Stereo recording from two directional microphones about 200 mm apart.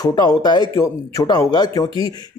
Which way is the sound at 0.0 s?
20° left (ahead or behind).